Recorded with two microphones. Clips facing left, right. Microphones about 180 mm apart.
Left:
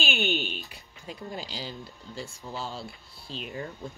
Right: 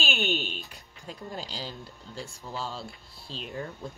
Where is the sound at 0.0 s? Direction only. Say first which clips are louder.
Left 1 dB; centre (ahead or behind).